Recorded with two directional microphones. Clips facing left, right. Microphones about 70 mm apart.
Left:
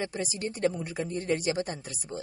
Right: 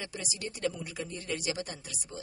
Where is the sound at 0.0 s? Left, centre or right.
Left.